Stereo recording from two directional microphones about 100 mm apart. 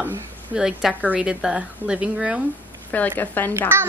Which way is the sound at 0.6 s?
5° right (ahead or behind).